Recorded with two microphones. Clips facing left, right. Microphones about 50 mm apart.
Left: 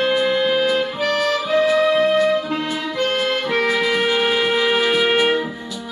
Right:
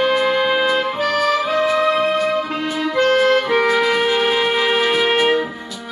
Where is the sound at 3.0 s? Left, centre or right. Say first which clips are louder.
Right 7 dB; right.